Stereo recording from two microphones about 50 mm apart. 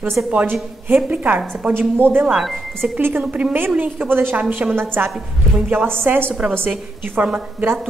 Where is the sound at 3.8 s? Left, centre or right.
Right.